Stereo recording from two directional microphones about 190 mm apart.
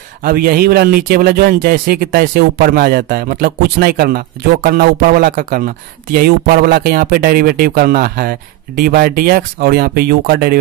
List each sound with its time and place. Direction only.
0.2 s speech: 50° right (ahead or behind)